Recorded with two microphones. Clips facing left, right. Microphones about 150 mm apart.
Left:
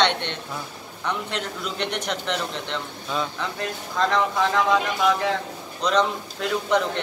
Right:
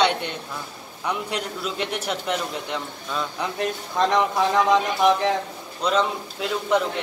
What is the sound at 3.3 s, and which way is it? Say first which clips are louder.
Speech: right 3 dB; 20° right (ahead or behind).